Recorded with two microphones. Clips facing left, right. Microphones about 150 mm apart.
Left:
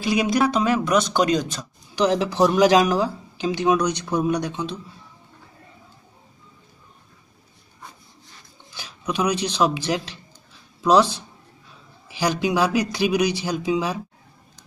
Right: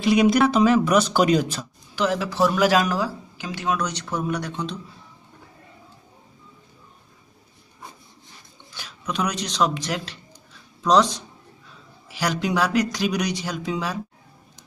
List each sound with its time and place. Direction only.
0.0 s speech: centre (ahead or behind)
2.0 s speech: 20° left (ahead or behind)
8.7 s speech: 10° left (ahead or behind)
12.2 s speech: 10° left (ahead or behind)